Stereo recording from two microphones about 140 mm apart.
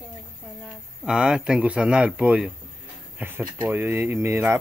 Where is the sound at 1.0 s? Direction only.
5° right (ahead or behind).